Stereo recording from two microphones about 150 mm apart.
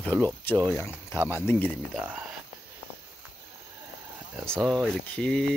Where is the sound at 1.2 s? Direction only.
10° right (ahead or behind).